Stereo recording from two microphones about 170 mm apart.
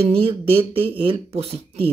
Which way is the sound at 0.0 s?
35° right (ahead or behind).